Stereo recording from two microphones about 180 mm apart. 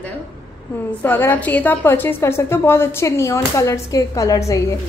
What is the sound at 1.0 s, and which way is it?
Speech, 10° left (ahead or behind).